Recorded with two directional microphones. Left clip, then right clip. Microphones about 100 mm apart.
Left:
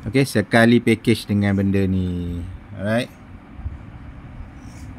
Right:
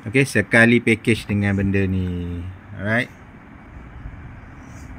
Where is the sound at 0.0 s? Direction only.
25° left (ahead or behind).